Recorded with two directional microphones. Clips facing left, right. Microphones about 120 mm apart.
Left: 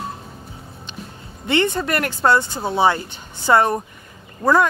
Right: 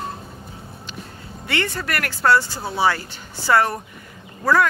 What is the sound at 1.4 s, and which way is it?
Speech, 20° left (ahead or behind).